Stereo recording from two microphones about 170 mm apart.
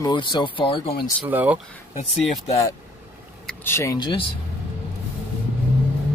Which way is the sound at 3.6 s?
15° left (ahead or behind).